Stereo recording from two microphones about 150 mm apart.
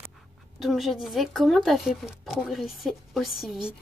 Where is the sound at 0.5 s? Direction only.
Centre (ahead or behind).